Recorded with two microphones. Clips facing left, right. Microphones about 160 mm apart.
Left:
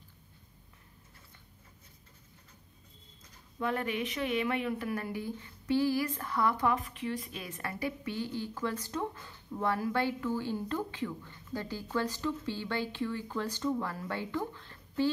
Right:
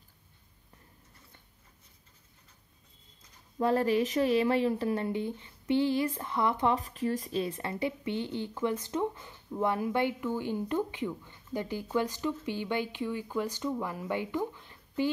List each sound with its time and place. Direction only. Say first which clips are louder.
3.5 s speech: right 7 dB; 35° right (ahead or behind); by 15.0 s 15° right (ahead or behind)